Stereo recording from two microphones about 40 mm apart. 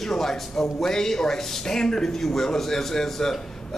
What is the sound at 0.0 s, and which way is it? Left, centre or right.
A man's voice, centre.